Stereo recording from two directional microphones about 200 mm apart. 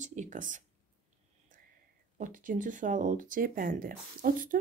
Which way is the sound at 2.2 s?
40° right (ahead or behind).